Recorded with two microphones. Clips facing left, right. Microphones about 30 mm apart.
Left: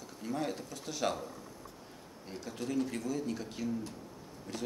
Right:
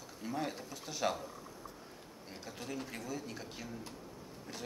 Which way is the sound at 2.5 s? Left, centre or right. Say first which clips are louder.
Left 8 dB; centre.